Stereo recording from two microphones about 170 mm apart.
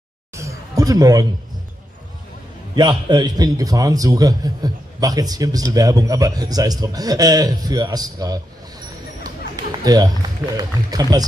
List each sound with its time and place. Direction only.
0.3 s a sound: 15° right (ahead or behind)
2.7 s a man's voice: 25° right (ahead or behind)
9.9 s a man's voice: 20° right (ahead or behind)